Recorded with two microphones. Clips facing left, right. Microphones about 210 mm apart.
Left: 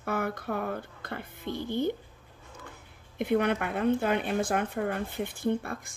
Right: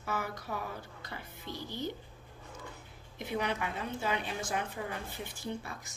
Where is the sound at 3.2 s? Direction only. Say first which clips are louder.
Left 8 dB; 55° left (ahead or behind).